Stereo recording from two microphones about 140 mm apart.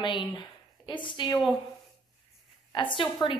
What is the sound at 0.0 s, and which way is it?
A woman's voice, 35° left (ahead or behind).